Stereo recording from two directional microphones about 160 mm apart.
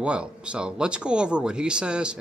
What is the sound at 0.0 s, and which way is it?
Speech, 5° right (ahead or behind).